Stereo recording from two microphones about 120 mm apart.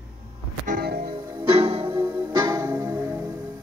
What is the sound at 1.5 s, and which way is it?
Music, 55° right (ahead or behind).